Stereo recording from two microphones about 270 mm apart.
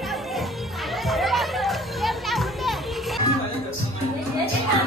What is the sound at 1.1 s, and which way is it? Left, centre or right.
Music, centre.